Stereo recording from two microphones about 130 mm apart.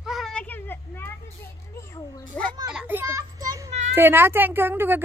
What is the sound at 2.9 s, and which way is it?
Children playing, 25° right (ahead or behind).